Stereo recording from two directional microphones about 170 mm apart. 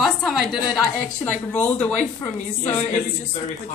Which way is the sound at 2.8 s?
45° left (ahead or behind).